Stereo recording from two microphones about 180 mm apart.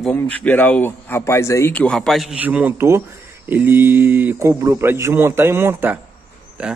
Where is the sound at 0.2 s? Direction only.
10° left (ahead or behind).